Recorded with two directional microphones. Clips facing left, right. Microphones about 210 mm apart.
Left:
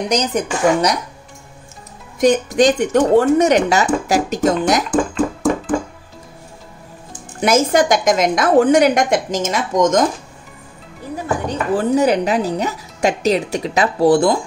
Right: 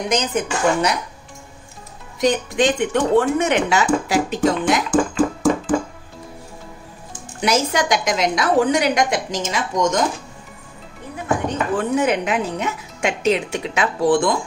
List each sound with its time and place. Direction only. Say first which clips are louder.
0.1 s speech: left 2 dB; 40° left (ahead or behind)
2.1 s speech: left 5 dB; 45° left (ahead or behind)
4.9 s a sound: even; 5° right (ahead or behind)
7.4 s speech: left 5 dB; 50° left (ahead or behind)
11.4 s speech: left 6 dB; 35° left (ahead or behind)